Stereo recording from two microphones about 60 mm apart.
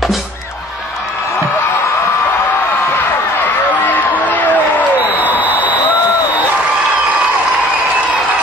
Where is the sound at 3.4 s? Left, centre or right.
Left.